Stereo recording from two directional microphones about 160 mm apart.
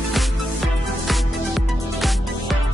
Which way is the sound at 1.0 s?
Centre (ahead or behind).